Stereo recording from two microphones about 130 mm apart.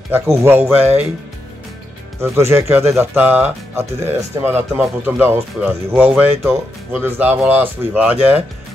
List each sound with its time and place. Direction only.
0.1 s speech: 20° right (ahead or behind)
2.1 s speech: 20° right (ahead or behind)